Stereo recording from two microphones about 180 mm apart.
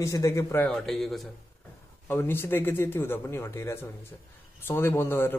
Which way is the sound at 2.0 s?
10° left (ahead or behind).